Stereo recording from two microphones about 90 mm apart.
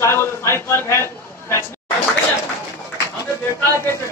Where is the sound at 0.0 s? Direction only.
30° left (ahead or behind).